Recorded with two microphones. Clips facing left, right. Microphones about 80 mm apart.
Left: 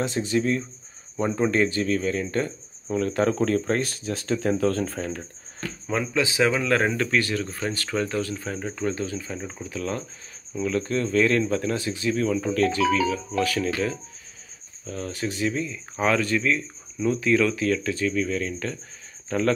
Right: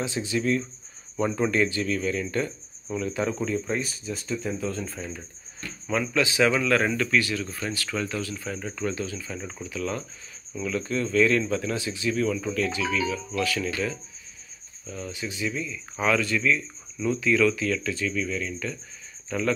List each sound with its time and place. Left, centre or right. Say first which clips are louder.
0.0 s speech: left 3 dB; left
1.2 s speech: left 2 dB; left
1.5 s speech: left 2 dB; left
3.1 s speech: left 5 dB; left
5.9 s speech: even; left
12.5 s speech: left 5 dB; left
12.9 s speech: left 4 dB; left
14.9 s speech: left 4 dB; left